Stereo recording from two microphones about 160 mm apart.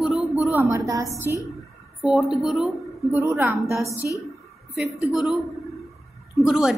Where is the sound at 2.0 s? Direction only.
Centre (ahead or behind).